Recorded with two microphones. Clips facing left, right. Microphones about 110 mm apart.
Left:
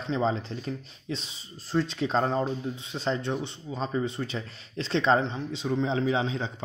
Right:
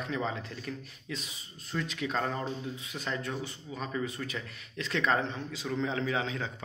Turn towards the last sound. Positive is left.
turn(degrees=25)  # may be behind; listen again after turning